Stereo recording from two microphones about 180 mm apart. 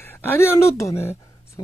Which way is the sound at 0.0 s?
10° left (ahead or behind).